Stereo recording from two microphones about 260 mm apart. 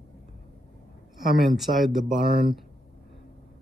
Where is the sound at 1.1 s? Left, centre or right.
Centre.